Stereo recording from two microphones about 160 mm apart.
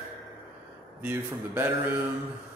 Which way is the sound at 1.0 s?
10° right (ahead or behind).